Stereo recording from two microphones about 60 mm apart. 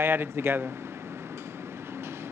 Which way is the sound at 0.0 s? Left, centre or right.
Right.